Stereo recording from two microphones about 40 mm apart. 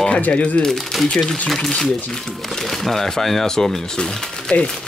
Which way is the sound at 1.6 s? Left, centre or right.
Centre.